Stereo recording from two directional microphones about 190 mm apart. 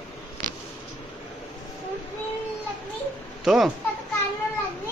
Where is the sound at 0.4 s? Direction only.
45° right (ahead or behind).